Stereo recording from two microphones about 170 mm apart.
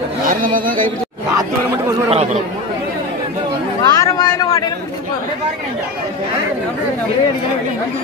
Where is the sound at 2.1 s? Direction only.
40° right (ahead or behind).